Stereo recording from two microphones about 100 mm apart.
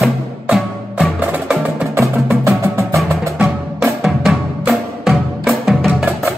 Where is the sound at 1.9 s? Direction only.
25° right (ahead or behind).